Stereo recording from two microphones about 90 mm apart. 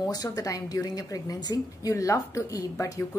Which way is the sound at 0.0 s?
45° left (ahead or behind).